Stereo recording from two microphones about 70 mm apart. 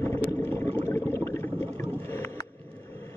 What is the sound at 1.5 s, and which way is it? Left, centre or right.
Rowboat, left.